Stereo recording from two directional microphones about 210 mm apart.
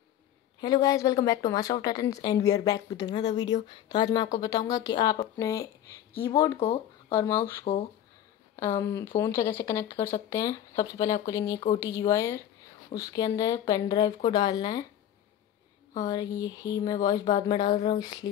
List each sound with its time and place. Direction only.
0.6 s a woman's voice: 20° left (ahead or behind)
8.5 s a woman's voice: 15° left (ahead or behind)
16.0 s speech: 20° left (ahead or behind)